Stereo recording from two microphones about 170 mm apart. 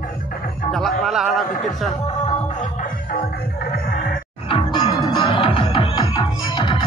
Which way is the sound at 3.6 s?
60° left (ahead or behind).